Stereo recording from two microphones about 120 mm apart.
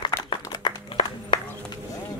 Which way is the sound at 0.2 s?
35° left (ahead or behind).